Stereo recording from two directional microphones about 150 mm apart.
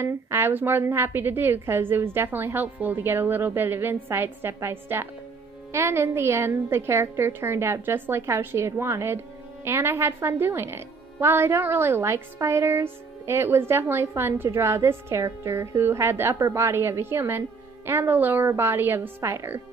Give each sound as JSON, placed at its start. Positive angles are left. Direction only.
{"t": 0.0, "sound": "a woman's voice", "side_deg": -15}